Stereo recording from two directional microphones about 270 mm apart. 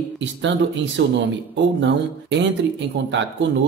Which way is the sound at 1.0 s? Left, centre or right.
Right.